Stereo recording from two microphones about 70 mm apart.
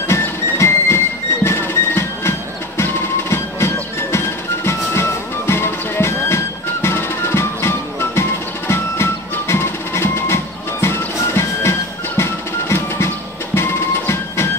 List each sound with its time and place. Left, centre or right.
0.1 s music: left
5.5 s music: left